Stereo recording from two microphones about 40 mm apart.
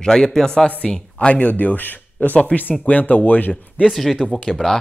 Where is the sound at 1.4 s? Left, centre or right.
Left.